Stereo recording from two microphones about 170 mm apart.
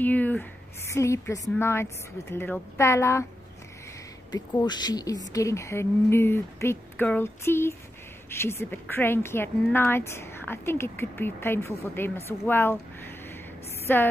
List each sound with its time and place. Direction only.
0.0 s a woman's voice: 10° left (ahead or behind)
4.6 s a woman's voice: 25° left (ahead or behind)
13.9 s a woman's voice: 10° left (ahead or behind)